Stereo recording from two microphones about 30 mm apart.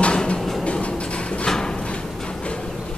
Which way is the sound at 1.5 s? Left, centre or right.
Left.